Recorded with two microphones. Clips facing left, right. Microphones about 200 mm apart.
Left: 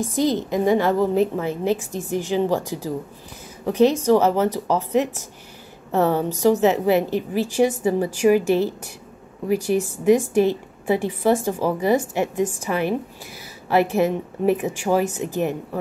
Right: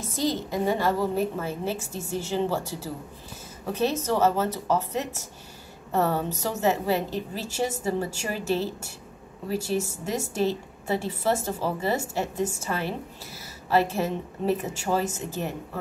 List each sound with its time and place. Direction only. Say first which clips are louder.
0.0 s a woman's voice: left 7 dB; 15° left (ahead or behind)